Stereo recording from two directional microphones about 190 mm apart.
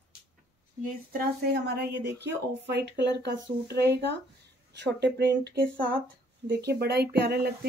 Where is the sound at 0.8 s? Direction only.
50° right (ahead or behind).